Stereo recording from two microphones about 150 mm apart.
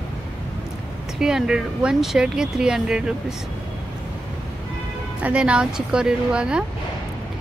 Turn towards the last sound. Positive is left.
turn(degrees=-5)  # may be behind; listen again after turning